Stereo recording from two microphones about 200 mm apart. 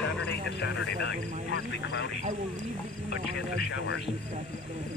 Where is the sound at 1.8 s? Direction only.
60° left (ahead or behind).